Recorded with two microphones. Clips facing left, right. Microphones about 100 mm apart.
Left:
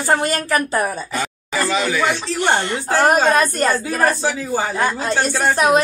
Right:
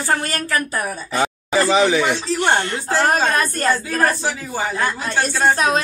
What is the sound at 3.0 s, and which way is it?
A woman's voice, 20° left (ahead or behind).